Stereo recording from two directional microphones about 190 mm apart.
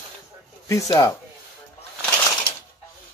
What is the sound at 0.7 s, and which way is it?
Speech, 20° left (ahead or behind).